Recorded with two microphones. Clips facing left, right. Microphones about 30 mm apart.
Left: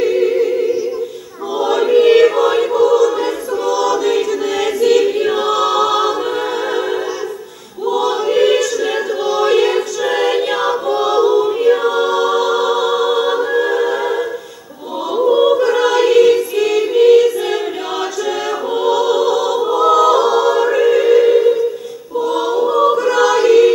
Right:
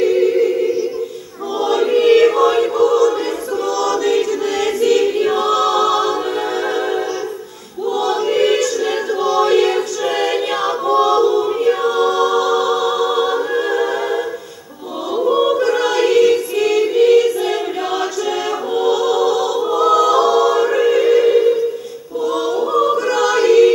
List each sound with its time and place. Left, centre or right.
0.0 s music: centre
1.6 s choir: centre
7.9 s choir: centre
11.7 s music: centre
15.1 s choir: centre
15.6 s choir: centre
18.9 s music: left
19.5 s music: centre
22.2 s choir: centre
23.3 s music: centre